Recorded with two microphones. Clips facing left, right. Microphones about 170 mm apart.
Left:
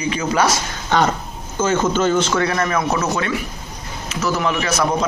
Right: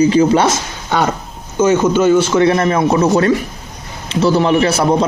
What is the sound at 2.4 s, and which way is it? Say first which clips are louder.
A man's voice: right 7 dB; 25° right (ahead or behind).